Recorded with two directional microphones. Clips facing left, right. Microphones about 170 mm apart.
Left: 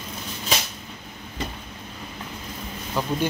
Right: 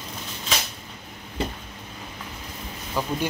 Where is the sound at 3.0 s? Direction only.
10° right (ahead or behind).